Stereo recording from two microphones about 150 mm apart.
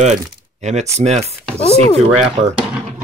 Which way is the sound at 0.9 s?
45° right (ahead or behind).